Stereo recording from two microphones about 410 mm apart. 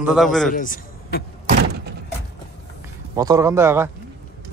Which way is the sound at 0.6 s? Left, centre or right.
Centre.